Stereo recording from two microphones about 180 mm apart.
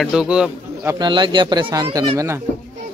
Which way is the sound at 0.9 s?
25° right (ahead or behind).